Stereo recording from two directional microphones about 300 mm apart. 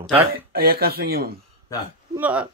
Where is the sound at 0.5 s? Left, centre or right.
Right.